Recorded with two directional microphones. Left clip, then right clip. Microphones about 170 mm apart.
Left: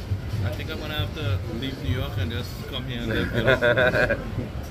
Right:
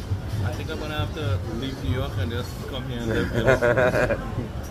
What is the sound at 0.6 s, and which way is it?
A man's voice, 15° left (ahead or behind).